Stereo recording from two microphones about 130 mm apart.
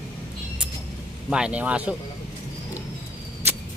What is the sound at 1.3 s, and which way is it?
Speech, 10° right (ahead or behind).